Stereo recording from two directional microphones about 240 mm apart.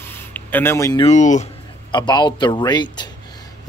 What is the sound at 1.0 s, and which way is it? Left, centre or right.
Speech, left.